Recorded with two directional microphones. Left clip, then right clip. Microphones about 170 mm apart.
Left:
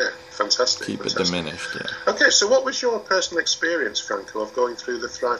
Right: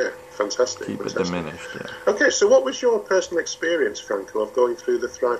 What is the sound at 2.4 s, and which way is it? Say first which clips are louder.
Speech: right 3 dB; 35° right (ahead or behind).